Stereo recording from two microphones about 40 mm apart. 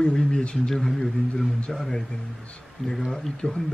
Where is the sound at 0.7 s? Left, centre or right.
Centre.